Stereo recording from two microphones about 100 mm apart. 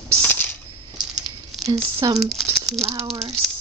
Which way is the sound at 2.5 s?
Centre (ahead or behind).